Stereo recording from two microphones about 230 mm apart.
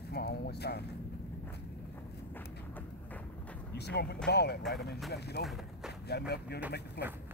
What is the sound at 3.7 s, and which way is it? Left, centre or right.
Speech, left.